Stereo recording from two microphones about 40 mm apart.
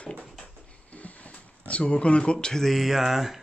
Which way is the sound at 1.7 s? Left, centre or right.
Left.